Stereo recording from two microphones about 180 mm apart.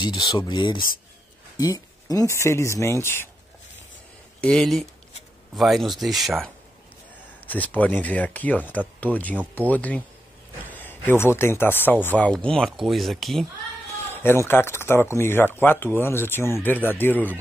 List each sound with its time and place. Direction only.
0.0 s speech: 20° left (ahead or behind)
1.6 s a sound: 20° left (ahead or behind)
2.3 s a man's voice: 15° left (ahead or behind)
4.4 s a man's voice: 5° left (ahead or behind)
14.1 s a man's voice: 10° left (ahead or behind)